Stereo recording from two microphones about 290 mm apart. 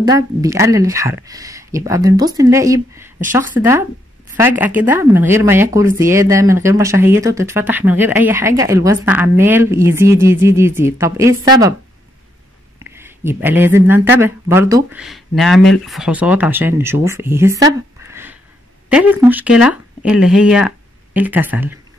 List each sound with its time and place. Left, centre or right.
0.0 s speech: centre
3.6 s speech: left
4.4 s speech: centre
12.7 s speech: centre
18.1 s a sound: centre
18.9 s speech: centre